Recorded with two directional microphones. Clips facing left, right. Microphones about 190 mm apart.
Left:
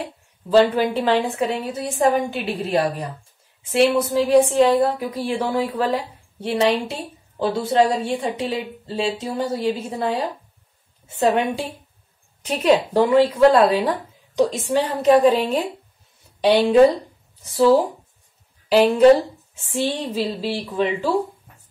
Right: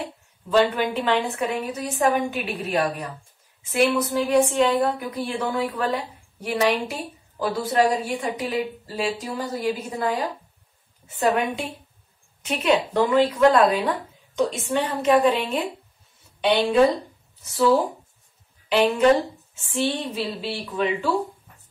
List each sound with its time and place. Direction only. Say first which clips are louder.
0.5 s a woman's voice: left 4 dB; 35° left (ahead or behind)
17.6 s speech: left 4 dB; 35° left (ahead or behind)